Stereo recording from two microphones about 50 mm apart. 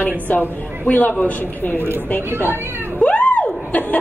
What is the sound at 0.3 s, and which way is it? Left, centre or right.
A woman's voice, left.